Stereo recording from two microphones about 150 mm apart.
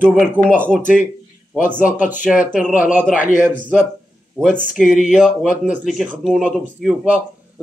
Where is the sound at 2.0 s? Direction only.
60° left (ahead or behind).